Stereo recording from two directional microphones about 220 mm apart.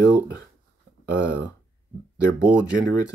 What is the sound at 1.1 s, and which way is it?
Speech, 5° right (ahead or behind).